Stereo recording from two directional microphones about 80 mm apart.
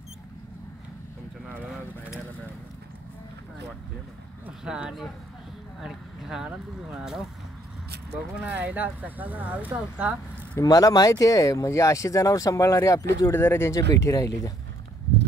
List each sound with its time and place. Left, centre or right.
4.6 s speech: centre
8.4 s speech: centre
10.6 s speech: left
13.3 s speech: left
13.7 s speech: left